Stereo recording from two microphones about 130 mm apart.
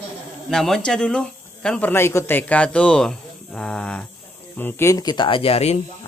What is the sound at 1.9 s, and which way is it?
Speech, 20° left (ahead or behind).